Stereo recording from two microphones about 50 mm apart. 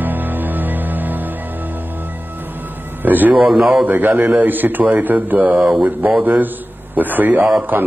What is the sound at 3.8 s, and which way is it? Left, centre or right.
A man's voice, right.